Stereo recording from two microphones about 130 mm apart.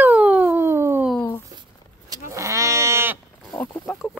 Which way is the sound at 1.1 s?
10° left (ahead or behind).